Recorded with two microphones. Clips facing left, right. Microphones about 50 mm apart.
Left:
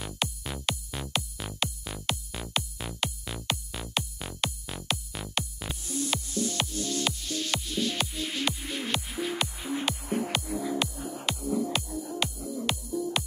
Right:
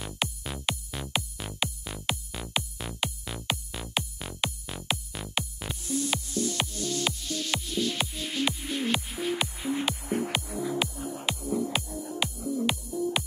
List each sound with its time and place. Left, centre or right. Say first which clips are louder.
0.0 s music: even; centre